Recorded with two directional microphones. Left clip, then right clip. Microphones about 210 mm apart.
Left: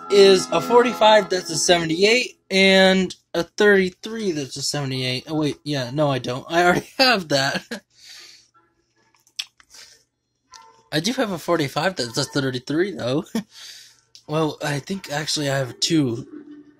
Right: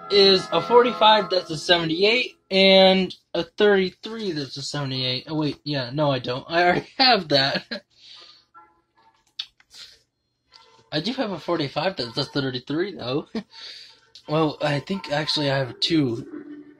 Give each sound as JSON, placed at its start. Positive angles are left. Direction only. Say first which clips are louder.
{"t": 0.1, "sound": "speech", "louder": "left 3 dB", "side_deg": 20}
{"t": 10.9, "sound": "speech", "louder": "left 3 dB", "side_deg": 30}
{"t": 14.2, "sound": "speech", "louder": "right 1 dB", "side_deg": 10}